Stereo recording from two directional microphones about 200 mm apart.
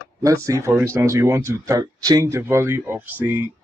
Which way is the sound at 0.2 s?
15° right (ahead or behind).